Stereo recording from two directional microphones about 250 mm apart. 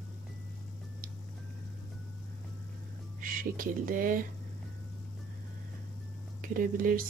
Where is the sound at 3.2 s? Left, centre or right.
Right.